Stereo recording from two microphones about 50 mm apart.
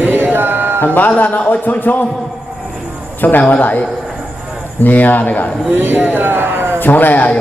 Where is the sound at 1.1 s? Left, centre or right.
Left.